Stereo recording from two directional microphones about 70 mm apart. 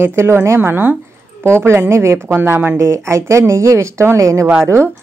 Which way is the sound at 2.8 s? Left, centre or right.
Right.